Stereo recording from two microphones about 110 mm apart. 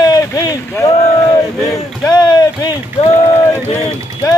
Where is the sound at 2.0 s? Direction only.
40° left (ahead or behind).